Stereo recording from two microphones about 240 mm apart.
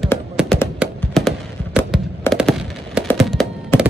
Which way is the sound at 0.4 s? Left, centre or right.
Centre.